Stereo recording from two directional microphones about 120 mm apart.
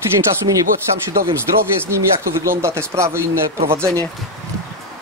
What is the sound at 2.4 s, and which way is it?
Speech, 25° right (ahead or behind).